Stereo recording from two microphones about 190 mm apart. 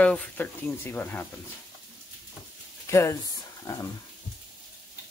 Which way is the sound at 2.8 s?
15° left (ahead or behind).